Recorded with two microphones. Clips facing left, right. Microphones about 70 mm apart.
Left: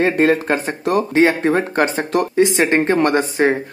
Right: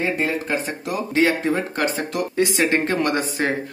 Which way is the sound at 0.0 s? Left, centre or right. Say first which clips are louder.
Left 8 dB; left.